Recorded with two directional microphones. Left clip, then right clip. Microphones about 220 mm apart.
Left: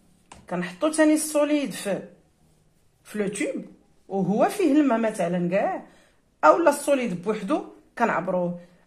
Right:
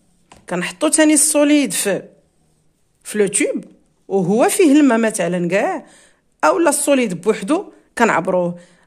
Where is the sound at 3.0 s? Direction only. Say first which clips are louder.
Right 10 dB; 50° right (ahead or behind).